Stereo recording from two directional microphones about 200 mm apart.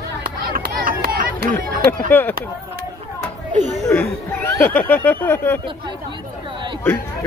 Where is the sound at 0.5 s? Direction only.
45° right (ahead or behind).